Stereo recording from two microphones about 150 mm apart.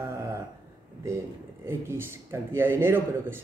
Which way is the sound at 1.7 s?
15° right (ahead or behind).